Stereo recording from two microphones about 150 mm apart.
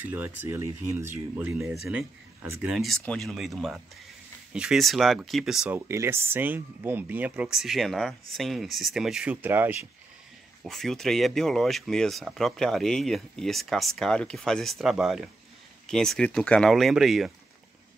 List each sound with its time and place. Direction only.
0.0 s speech: 10° right (ahead or behind)
2.7 s speech: centre (ahead or behind)
5.9 s speech: 15° right (ahead or behind)
10.6 s speech: centre (ahead or behind)